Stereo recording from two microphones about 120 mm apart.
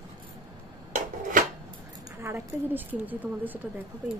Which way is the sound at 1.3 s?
90° right.